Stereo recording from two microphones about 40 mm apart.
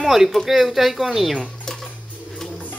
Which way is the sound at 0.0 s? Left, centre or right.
Centre.